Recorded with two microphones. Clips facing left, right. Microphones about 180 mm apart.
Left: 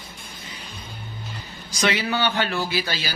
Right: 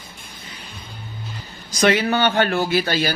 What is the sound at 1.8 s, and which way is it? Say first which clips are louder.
Speech: right 6 dB; 50° right (ahead or behind).